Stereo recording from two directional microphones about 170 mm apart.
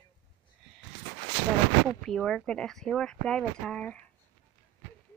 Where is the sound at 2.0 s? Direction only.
Centre (ahead or behind).